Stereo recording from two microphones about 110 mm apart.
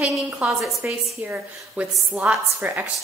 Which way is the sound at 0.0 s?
5° right (ahead or behind).